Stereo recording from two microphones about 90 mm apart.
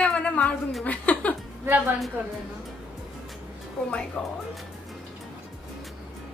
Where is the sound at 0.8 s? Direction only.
15° left (ahead or behind).